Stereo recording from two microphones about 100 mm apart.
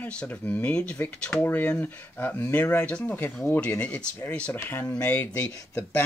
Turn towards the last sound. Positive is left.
turn(degrees=20)  # may be behind; listen again after turning